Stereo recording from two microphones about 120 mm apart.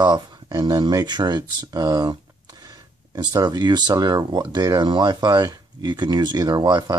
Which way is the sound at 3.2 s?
35° right (ahead or behind).